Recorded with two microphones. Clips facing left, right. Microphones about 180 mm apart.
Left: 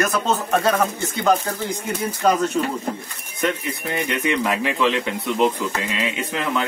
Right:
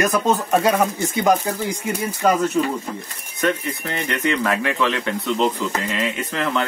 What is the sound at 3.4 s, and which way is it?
Speech, 15° left (ahead or behind).